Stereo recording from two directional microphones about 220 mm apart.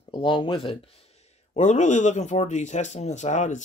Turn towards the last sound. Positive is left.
turn(degrees=35)  # may be behind; listen again after turning